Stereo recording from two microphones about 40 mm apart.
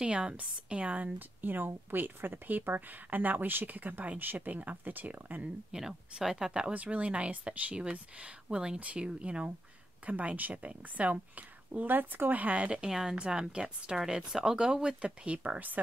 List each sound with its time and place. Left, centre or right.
0.0 s speech: right
1.4 s speech: right
5.7 s speech: centre
6.7 s speech: right
11.8 s speech: right
12.8 s speech: centre
15.0 s speech: right